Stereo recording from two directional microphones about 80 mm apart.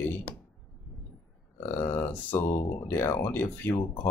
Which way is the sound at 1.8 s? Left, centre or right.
Left.